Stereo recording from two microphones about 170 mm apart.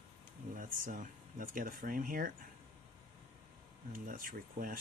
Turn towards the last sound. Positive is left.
turn(degrees=-55)  # may be behind; listen again after turning